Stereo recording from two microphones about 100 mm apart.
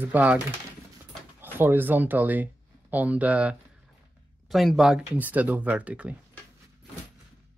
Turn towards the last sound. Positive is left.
turn(degrees=-15)  # may be behind; listen again after turning